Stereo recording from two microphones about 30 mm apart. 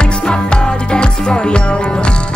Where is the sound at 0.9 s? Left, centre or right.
Left.